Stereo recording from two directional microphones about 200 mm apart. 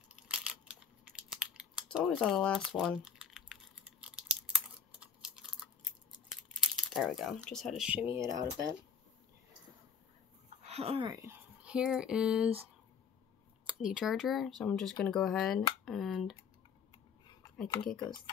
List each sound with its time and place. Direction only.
0.1 s a sound: 5° right (ahead or behind)
6.5 s speech: centre (ahead or behind); by 8.7 s 15° right (ahead or behind)
10.6 s speech: 30° right (ahead or behind); by 12.6 s 5° right (ahead or behind)
13.7 s speech: 5° right (ahead or behind)
18.0 s speech: 20° left (ahead or behind)